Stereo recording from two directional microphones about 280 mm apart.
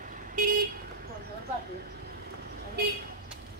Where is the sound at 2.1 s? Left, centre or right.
Right.